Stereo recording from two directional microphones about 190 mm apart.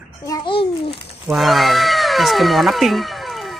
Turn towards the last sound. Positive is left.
turn(degrees=0)  # may be behind; listen again after turning